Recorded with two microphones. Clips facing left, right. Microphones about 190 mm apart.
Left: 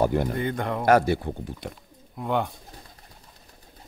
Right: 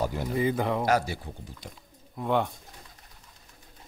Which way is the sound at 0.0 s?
60° left (ahead or behind).